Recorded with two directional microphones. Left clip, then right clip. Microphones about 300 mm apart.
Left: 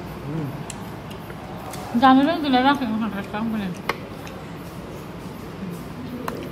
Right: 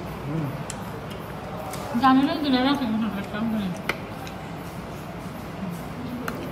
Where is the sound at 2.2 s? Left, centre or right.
Centre.